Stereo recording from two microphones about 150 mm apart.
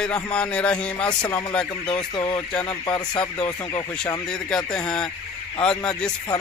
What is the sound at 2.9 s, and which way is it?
Speech, 30° left (ahead or behind).